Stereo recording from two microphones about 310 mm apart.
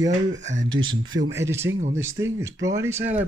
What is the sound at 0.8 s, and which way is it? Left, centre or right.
Speech, right.